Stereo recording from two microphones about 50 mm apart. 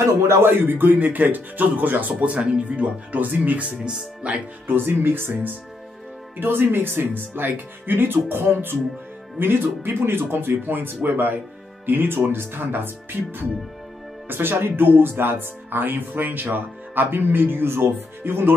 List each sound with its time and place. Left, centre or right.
0.0 s speech: right
3.8 s speech: right
4.6 s speech: right
6.4 s speech: right